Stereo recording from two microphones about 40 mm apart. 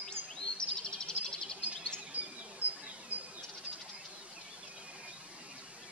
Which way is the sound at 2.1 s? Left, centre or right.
Right.